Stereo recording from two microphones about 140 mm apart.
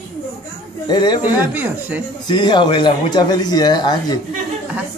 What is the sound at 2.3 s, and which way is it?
A man's voice, 35° left (ahead or behind).